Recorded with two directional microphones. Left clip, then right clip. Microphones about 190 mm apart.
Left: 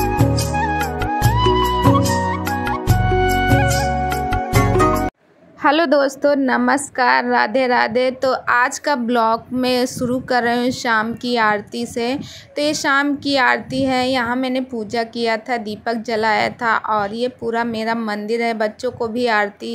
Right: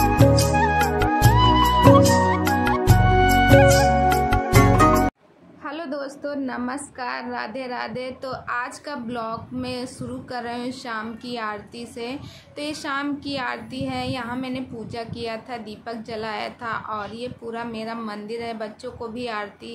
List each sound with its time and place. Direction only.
0.0 s music: centre (ahead or behind)
5.6 s a woman's voice: 45° left (ahead or behind)